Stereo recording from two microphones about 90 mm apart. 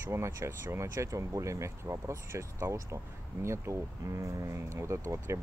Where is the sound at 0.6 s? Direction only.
40° right (ahead or behind).